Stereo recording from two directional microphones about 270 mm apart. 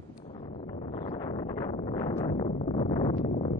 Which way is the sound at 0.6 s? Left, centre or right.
Left.